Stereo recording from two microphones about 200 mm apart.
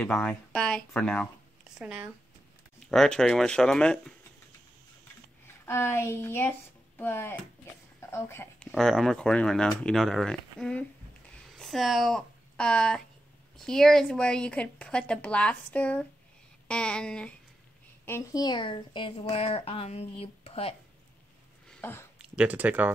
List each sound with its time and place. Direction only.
0.0 s speech: 5° left (ahead or behind)
1.8 s speech: 5° right (ahead or behind)
5.7 s speech: 10° left (ahead or behind)
8.7 s speech: centre (ahead or behind); by 20.7 s 30° left (ahead or behind)
21.6 s a sound: 10° left (ahead or behind)
22.2 s speech: 5° right (ahead or behind)